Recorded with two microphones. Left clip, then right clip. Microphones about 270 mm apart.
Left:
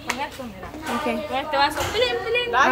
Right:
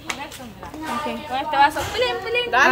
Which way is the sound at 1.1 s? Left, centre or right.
Centre.